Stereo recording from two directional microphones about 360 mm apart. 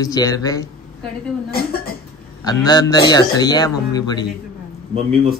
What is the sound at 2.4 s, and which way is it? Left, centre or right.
A man's voice, centre.